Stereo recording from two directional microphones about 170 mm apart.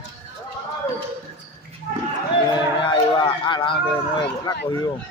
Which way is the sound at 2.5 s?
25° left (ahead or behind).